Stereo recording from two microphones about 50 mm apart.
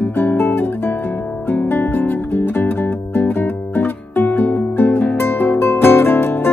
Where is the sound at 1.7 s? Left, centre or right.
Left.